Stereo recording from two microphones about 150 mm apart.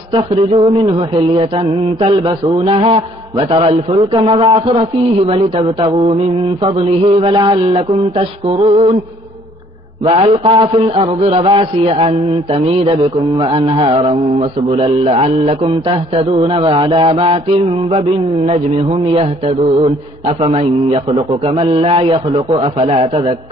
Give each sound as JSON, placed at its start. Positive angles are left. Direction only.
{"t": 0.1, "sound": "speech", "side_deg": -40}
{"t": 10.0, "sound": "speech", "side_deg": -40}
{"t": 21.3, "sound": "speech", "side_deg": -35}